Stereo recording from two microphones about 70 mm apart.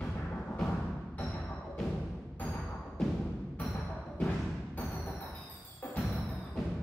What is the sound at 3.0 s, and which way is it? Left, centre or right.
Music, centre.